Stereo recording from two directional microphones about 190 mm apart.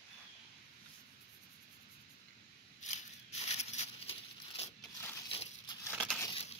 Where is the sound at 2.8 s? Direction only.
35° left (ahead or behind).